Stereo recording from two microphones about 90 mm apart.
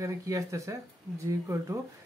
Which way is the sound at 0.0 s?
35° right (ahead or behind).